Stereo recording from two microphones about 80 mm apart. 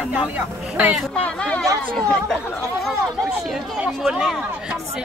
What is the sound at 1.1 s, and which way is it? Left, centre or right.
Speech, centre.